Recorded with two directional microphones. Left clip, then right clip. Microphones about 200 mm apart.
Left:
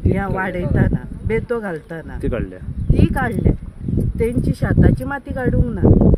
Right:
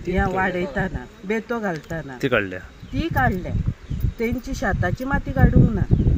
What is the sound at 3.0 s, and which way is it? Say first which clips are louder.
Speech: even; 20° left (ahead or behind).